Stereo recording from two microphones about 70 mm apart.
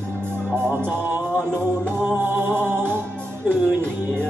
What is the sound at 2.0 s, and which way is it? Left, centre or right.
Music, right.